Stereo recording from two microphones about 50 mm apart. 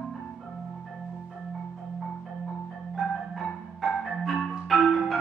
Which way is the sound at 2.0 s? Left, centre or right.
Centre.